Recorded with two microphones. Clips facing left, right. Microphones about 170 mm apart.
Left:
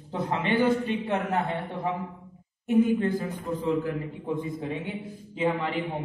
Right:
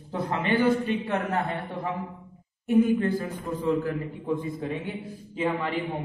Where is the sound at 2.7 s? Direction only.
20° left (ahead or behind).